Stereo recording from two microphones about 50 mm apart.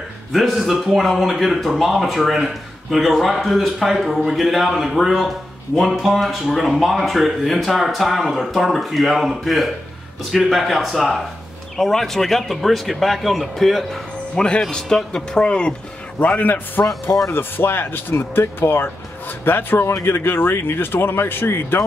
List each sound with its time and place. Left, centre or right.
0.3 s speech: centre
14.3 s speech: centre
16.2 s a man's voice: left
19.9 s speech: left